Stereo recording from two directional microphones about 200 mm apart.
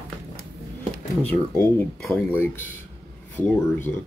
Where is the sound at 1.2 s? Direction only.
10° left (ahead or behind).